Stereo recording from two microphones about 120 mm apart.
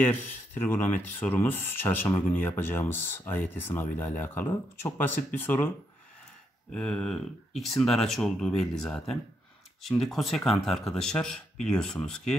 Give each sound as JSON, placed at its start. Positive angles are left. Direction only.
{"t": 0.0, "sound": "speech", "side_deg": 15}
{"t": 6.7, "sound": "speech", "side_deg": 5}